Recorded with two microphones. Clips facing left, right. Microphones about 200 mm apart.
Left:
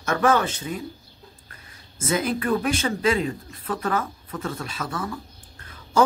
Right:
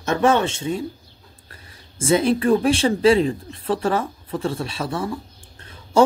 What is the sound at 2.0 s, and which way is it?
Speech, 30° right (ahead or behind).